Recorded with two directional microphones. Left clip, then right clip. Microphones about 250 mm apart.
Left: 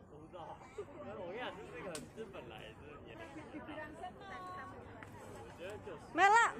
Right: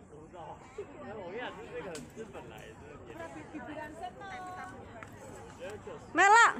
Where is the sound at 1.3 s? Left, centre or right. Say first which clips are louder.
Right 5 dB; left.